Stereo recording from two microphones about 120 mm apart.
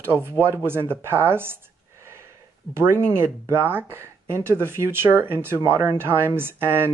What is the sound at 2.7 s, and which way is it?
Speech, 20° right (ahead or behind).